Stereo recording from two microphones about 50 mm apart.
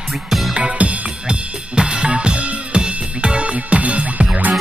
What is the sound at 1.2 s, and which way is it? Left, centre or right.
Drum kit, centre.